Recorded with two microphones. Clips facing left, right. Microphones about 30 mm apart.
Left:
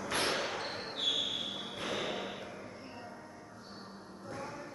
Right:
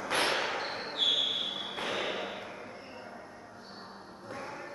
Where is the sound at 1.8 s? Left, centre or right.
Right.